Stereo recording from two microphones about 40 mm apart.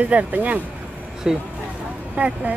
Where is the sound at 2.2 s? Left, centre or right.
Right.